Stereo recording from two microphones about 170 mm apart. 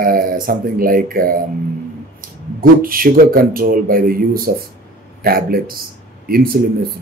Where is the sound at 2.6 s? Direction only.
55° right (ahead or behind).